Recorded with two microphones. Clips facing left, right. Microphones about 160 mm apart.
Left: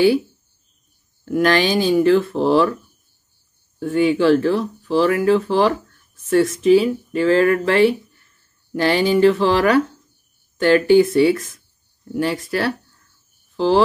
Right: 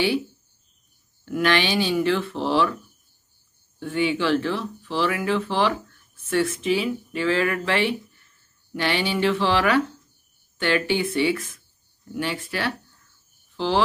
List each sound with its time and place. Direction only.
1.2 s speech: 40° left (ahead or behind)
3.8 s speech: 40° left (ahead or behind)